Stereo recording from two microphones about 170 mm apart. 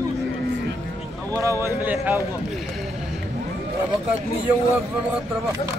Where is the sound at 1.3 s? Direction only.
20° right (ahead or behind).